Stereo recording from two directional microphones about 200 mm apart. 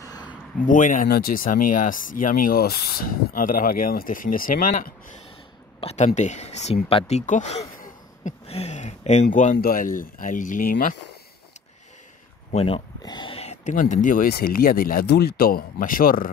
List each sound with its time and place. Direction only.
0.0 s a sound: 20° left (ahead or behind)
0.7 s speech: 40° left (ahead or behind)
5.8 s speech: 35° left (ahead or behind)
12.5 s speech: 25° left (ahead or behind); by 16.3 s 45° left (ahead or behind)